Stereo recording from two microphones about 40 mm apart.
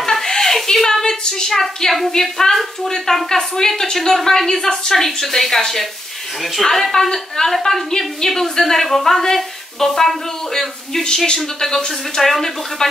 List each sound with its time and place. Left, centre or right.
0.1 s a sound: centre
0.8 s female singing: centre
2.2 s a woman's voice: centre